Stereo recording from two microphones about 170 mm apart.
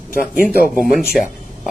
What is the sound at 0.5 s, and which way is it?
Speech, 55° left (ahead or behind).